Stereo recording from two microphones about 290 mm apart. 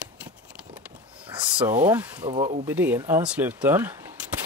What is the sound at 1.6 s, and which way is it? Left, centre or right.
Speech, centre.